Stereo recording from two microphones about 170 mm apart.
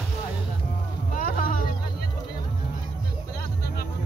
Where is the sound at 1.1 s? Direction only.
55° left (ahead or behind).